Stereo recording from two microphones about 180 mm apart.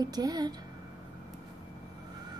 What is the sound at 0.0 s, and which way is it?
Speech, 20° right (ahead or behind).